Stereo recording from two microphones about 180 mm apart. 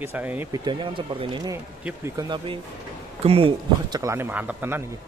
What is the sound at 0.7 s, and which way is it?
Speech, 25° right (ahead or behind).